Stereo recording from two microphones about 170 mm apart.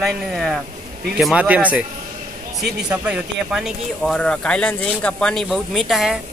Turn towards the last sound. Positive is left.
turn(degrees=0)  # may be behind; listen again after turning